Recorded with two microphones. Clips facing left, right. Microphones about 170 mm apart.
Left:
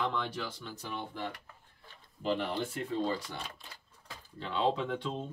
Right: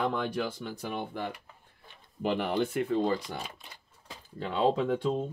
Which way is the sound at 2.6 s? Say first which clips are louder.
Right 7 dB; 65° right (ahead or behind).